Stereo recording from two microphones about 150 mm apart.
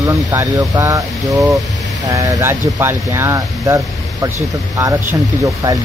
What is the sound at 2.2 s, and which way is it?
Speech, 15° right (ahead or behind).